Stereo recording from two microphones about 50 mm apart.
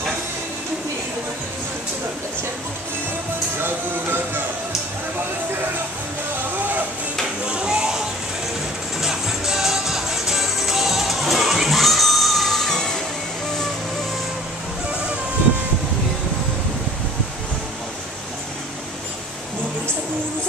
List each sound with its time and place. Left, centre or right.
3.6 s music: right
7.4 s a sound: centre
9.0 s music: centre